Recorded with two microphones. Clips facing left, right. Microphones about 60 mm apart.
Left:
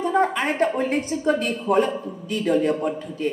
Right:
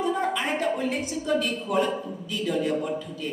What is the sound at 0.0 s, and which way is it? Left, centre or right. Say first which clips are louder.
Speech: left 5 dB; left.